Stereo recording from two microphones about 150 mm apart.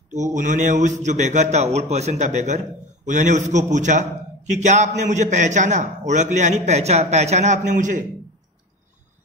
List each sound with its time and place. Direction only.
0.1 s a man's voice: 55° right (ahead or behind)